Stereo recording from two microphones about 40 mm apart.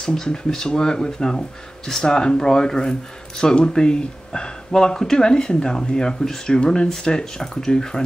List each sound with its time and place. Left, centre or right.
0.0 s speech: centre